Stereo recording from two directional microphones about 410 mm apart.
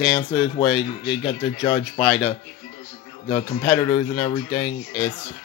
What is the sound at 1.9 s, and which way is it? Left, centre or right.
Speech, centre.